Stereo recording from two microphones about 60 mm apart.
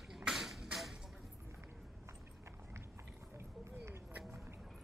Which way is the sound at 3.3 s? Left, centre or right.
Right.